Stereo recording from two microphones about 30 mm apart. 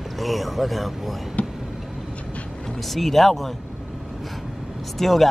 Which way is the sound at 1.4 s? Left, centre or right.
Left.